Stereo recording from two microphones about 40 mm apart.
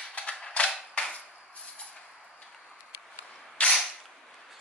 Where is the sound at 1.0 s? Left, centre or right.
Left.